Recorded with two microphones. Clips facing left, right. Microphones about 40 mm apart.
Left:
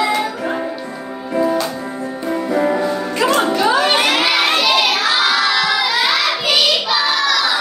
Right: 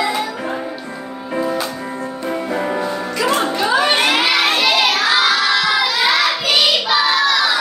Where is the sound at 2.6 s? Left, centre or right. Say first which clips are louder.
Left 3 dB; centre.